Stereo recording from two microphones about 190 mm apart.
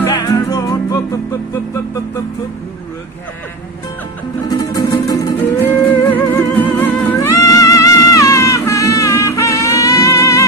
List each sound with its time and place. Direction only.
0.0 s music: 20° left (ahead or behind)
4.5 s music: 20° left (ahead or behind)